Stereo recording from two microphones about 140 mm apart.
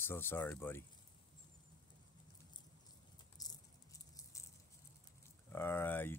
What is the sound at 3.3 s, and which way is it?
Rattle, 25° left (ahead or behind).